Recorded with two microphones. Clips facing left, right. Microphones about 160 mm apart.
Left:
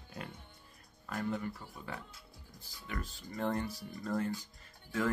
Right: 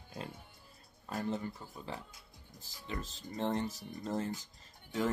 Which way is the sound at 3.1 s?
25° right (ahead or behind).